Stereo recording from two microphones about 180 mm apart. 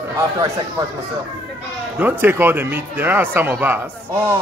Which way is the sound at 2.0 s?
10° right (ahead or behind).